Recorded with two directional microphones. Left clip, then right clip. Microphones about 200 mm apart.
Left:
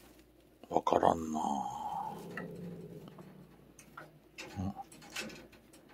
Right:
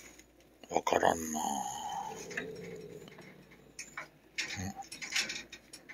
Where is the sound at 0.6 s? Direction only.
15° left (ahead or behind).